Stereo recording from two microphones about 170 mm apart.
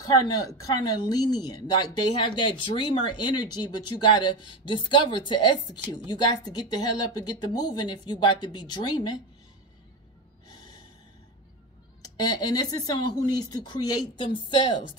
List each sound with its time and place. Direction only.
0.3 s speech: 20° left (ahead or behind)
12.0 s speech: 20° left (ahead or behind)